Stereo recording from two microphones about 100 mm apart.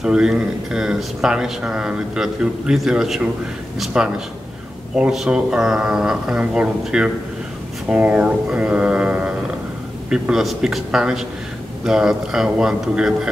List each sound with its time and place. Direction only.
0.0 s a man's voice: 5° right (ahead or behind)